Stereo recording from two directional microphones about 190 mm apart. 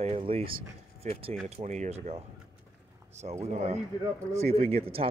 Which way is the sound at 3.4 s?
35° right (ahead or behind).